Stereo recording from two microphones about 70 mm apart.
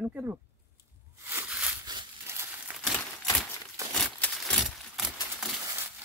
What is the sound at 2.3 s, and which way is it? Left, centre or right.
Crumpling, right.